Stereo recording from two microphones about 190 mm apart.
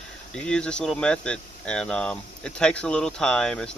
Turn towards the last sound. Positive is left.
turn(degrees=5)  # may be behind; listen again after turning